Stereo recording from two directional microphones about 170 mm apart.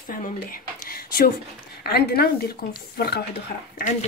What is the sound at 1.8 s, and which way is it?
A woman's voice, 70° left (ahead or behind).